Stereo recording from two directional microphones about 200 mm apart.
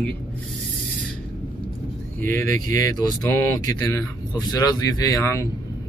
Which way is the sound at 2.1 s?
10° left (ahead or behind).